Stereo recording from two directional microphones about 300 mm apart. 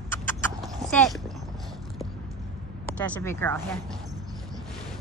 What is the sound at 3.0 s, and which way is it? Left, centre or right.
Speech, centre.